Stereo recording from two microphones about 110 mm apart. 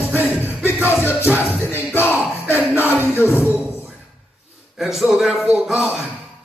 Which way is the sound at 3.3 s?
20° left (ahead or behind).